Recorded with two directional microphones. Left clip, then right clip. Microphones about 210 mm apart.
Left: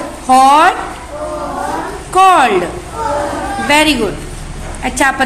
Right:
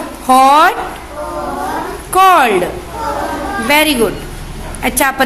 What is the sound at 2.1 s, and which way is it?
Speech, 15° right (ahead or behind).